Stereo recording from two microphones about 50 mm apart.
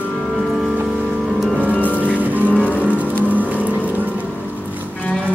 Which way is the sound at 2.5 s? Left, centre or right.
Left.